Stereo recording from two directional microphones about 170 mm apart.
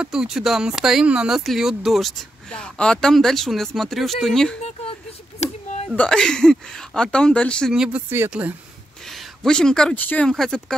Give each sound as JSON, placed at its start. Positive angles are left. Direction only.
{"t": 0.0, "sound": "speech", "side_deg": -5}
{"t": 5.4, "sound": "a sound", "side_deg": 40}
{"t": 5.9, "sound": "speech", "side_deg": 5}
{"t": 9.0, "sound": "speech", "side_deg": 0}